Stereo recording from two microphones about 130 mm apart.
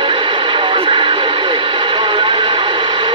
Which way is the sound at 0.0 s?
40° right (ahead or behind).